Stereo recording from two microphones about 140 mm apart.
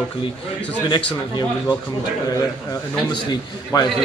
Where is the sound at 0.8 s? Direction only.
30° left (ahead or behind).